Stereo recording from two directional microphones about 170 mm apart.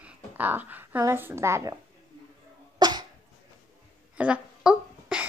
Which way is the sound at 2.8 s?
25° right (ahead or behind).